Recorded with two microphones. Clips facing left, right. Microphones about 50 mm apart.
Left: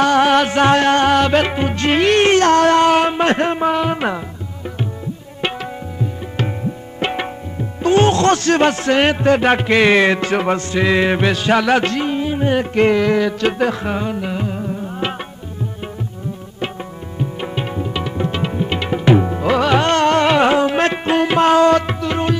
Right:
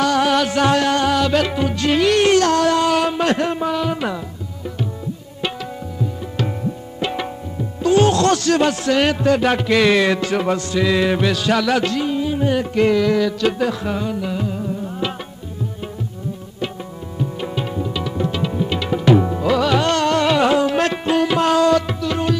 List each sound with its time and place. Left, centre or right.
0.0 s music: left
5.4 s tabla: left
7.0 s tabla: left
7.8 s speech: left
17.2 s music: left